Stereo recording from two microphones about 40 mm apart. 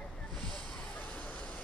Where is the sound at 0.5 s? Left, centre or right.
Left.